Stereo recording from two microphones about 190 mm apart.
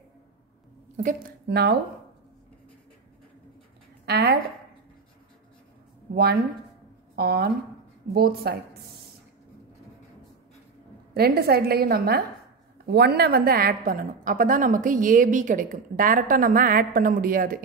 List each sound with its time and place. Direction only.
0.9 s a woman's voice: 45° right (ahead or behind)
1.5 s a woman's voice: 60° right (ahead or behind)
4.0 s a woman's voice: 55° right (ahead or behind)
6.1 s a woman's voice: 55° right (ahead or behind)
11.1 s a woman's voice: 55° right (ahead or behind)